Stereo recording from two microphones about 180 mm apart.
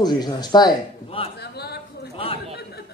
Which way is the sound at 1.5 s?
65° left (ahead or behind).